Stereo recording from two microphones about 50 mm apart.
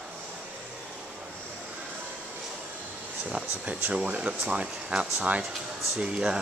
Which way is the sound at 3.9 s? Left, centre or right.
Right.